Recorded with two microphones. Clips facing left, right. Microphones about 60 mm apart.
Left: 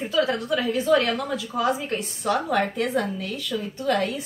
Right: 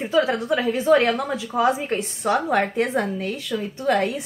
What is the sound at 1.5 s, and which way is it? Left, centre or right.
A woman's voice, right.